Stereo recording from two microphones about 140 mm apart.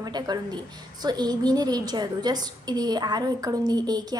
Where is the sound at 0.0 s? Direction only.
30° right (ahead or behind).